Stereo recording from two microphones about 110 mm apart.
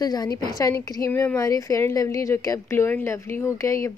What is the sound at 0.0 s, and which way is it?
Speech, 35° left (ahead or behind).